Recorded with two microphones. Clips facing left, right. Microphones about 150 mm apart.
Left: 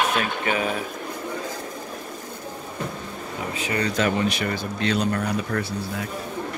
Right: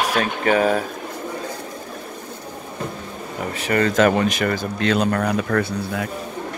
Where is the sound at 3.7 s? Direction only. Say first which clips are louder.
Right 7 dB; 50° right (ahead or behind); by 6.1 s 75° right (ahead or behind).